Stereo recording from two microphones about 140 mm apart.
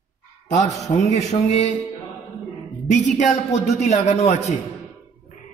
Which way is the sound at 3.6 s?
55° left (ahead or behind).